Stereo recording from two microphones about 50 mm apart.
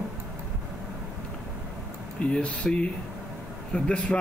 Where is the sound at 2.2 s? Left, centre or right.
Left.